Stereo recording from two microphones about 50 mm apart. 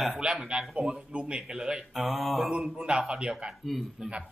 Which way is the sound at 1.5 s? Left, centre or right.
Centre.